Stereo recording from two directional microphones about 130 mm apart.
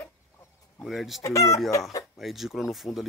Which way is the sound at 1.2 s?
25° left (ahead or behind).